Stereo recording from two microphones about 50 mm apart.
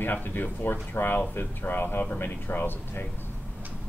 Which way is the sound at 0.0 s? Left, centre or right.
Left.